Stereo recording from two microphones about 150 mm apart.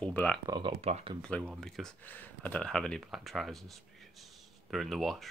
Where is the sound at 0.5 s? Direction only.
35° right (ahead or behind).